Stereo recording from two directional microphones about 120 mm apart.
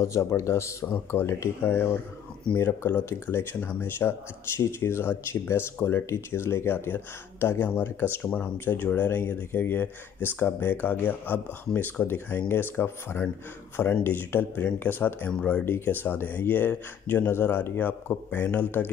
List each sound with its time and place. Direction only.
0.0 s speech: 25° left (ahead or behind)